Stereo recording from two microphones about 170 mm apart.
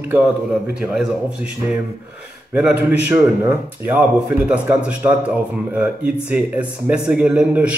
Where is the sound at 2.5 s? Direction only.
5° right (ahead or behind).